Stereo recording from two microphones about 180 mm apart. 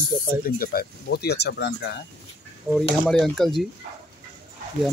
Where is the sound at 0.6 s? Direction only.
60° left (ahead or behind).